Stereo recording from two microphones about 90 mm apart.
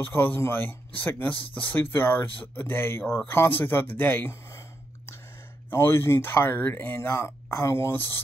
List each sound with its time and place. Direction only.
0.0 s speech: 20° left (ahead or behind)
5.7 s speech: 25° left (ahead or behind)